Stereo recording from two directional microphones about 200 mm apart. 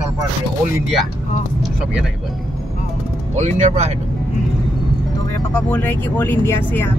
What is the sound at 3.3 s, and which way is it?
Speech, 35° right (ahead or behind).